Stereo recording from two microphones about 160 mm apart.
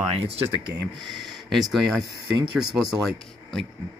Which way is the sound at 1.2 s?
Centre (ahead or behind).